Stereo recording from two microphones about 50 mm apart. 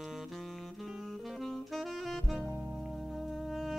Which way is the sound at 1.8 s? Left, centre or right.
Centre.